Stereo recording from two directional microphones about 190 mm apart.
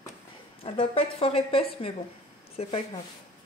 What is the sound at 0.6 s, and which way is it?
A woman's voice, 30° left (ahead or behind).